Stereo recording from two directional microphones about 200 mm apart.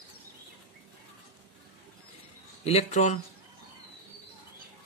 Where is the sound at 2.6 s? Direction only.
35° left (ahead or behind).